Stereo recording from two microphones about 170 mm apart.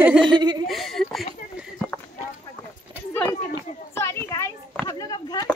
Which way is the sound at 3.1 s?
15° left (ahead or behind).